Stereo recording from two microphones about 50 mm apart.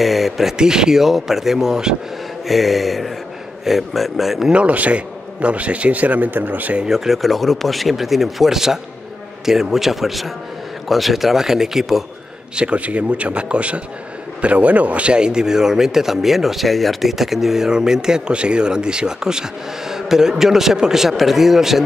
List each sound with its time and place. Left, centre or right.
0.0 s a man's voice: centre
2.4 s speech: centre
4.5 s a man's voice: right
6.8 s speech: centre
12.5 s a man's voice: right; by 21.8 s centre